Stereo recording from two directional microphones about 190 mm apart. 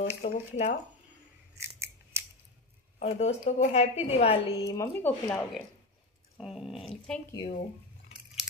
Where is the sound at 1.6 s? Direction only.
15° right (ahead or behind).